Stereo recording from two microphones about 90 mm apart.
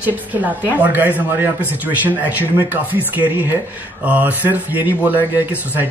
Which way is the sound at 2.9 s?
20° right (ahead or behind).